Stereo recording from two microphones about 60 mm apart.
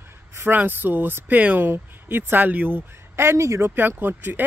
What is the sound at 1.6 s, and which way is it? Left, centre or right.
Speech, right.